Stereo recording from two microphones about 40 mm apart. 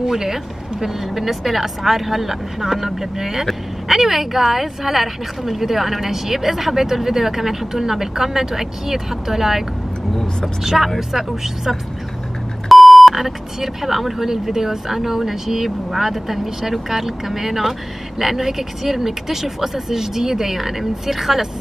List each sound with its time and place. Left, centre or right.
0.0 s a woman's voice: centre